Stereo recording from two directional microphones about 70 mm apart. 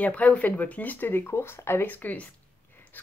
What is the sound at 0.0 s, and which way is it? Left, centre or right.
Speech, centre.